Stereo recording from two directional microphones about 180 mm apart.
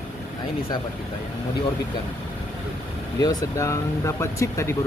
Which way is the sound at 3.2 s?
20° left (ahead or behind).